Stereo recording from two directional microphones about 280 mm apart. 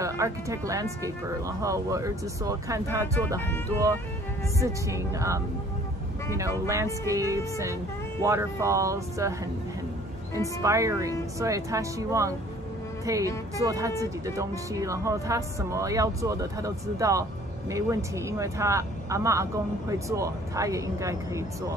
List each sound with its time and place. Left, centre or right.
0.0 s speech: centre
4.6 s speech: centre
6.7 s speech: centre
10.6 s speech: centre